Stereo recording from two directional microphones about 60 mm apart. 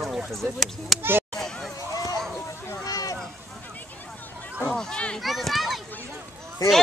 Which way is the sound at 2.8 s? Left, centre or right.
Left.